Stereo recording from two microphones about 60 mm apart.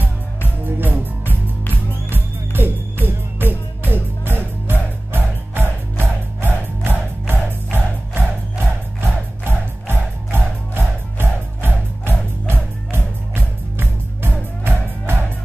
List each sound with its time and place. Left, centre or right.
0.7 s music: right